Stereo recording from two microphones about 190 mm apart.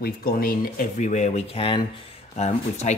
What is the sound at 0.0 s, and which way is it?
Speech, 50° left (ahead or behind).